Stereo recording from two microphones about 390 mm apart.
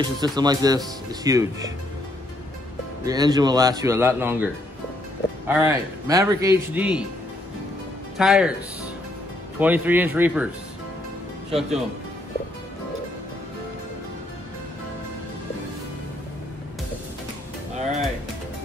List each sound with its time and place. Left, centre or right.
0.0 s speech: centre
3.1 s speech: centre
5.5 s a man's voice: centre
8.2 s a man's voice: centre
9.6 s a man's voice: centre
17.7 s music: centre